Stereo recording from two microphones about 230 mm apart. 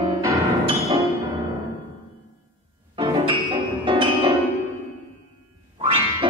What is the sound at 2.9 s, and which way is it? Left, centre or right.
Music, centre.